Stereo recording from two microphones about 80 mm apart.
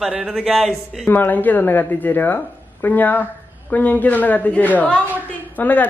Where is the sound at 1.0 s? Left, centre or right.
Left.